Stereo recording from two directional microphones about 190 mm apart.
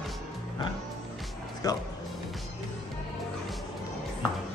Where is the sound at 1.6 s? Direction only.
20° left (ahead or behind).